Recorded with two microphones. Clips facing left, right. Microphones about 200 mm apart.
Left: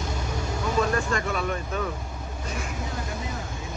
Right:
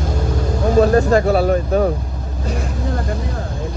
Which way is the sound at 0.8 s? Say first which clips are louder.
Right 13 dB; 35° right (ahead or behind).